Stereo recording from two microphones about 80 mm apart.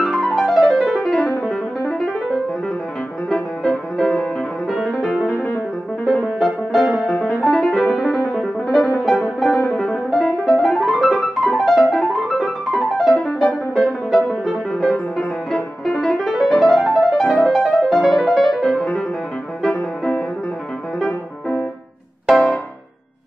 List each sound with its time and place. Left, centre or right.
0.0 s music: centre
3.3 s music: centre
5.3 s music: centre
6.4 s music: centre
19.7 s music: centre
22.2 s music: centre